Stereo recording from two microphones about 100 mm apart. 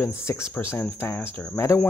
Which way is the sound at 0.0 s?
30° left (ahead or behind).